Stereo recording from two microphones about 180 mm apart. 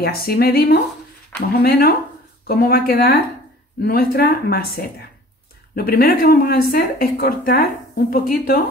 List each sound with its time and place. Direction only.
0.0 s speech: 55° left (ahead or behind)
5.8 s speech: 55° left (ahead or behind)